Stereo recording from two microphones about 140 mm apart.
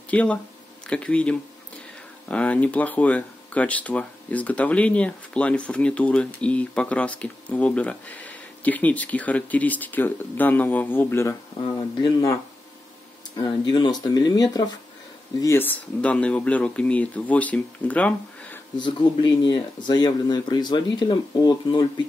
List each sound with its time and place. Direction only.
0.1 s speech: 10° left (ahead or behind); by 12.4 s 25° left (ahead or behind)
13.4 s speech: 35° left (ahead or behind)
15.4 s speech: 15° left (ahead or behind)
18.8 s speech: 35° left (ahead or behind)